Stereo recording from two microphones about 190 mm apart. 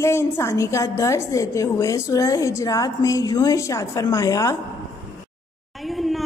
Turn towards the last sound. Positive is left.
turn(degrees=0)  # may be behind; listen again after turning